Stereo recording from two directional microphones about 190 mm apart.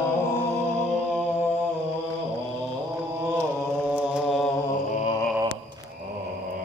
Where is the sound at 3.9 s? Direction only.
5° right (ahead or behind).